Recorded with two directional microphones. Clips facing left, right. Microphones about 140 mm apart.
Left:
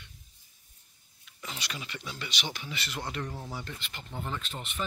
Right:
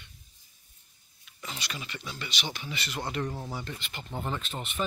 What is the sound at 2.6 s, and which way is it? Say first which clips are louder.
Speech: right 2 dB; centre (ahead or behind).